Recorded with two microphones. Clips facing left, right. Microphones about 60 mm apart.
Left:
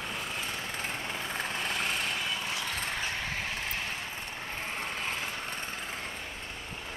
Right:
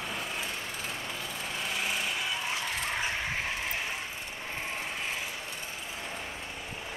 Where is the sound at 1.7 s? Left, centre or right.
Centre.